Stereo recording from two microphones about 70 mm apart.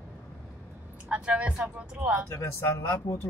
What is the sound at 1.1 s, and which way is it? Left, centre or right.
Speech, centre.